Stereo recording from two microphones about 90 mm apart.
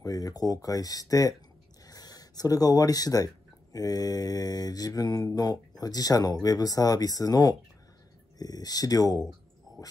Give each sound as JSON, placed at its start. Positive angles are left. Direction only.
{"t": 0.0, "sound": "mantra", "side_deg": 40}
{"t": 1.9, "sound": "speech", "side_deg": 45}
{"t": 3.7, "sound": "mantra", "side_deg": 45}
{"t": 9.7, "sound": "a sound", "side_deg": 45}